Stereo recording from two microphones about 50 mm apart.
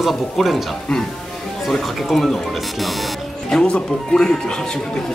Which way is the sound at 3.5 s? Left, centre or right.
Centre.